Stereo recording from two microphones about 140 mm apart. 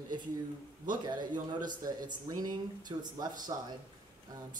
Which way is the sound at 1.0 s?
30° right (ahead or behind).